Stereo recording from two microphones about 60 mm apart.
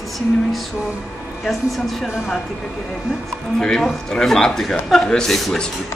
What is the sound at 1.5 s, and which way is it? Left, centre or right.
Speech, centre.